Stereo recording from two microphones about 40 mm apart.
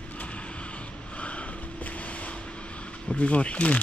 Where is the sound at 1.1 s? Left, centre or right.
Left.